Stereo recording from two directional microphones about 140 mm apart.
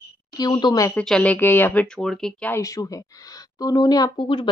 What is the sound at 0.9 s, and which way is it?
Speech, 5° left (ahead or behind).